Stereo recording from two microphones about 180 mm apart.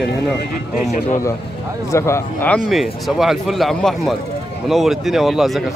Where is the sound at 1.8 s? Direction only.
15° left (ahead or behind).